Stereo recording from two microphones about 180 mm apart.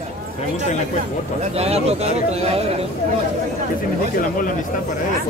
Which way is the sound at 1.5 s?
35° right (ahead or behind).